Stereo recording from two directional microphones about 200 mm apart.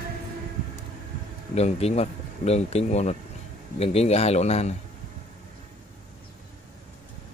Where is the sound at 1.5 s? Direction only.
30° left (ahead or behind).